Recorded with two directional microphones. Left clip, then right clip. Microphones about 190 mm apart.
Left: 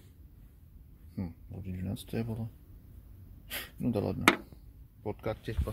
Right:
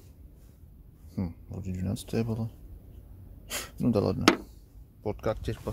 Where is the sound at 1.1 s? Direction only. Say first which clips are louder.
Right 5 dB; 15° right (ahead or behind).